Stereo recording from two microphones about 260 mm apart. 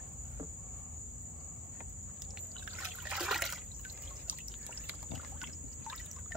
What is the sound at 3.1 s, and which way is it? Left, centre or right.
Water, centre.